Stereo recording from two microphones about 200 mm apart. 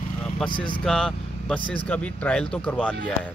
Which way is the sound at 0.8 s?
Centre (ahead or behind).